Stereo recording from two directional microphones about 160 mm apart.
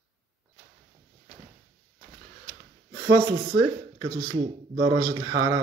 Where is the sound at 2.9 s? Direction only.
20° right (ahead or behind).